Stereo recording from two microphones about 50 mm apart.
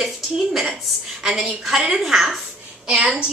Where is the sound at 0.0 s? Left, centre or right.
Centre.